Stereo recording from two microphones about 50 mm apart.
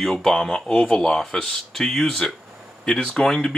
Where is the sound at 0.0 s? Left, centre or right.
Centre.